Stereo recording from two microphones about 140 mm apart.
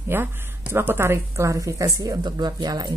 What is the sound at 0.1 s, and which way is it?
Speech, 15° right (ahead or behind).